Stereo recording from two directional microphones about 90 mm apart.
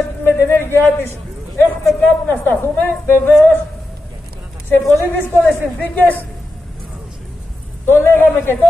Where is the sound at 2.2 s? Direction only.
20° left (ahead or behind).